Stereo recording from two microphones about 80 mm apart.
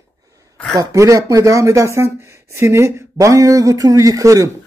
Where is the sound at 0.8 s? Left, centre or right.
Right.